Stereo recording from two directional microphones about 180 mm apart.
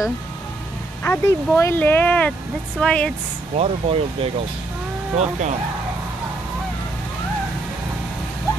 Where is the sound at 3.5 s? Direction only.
35° right (ahead or behind).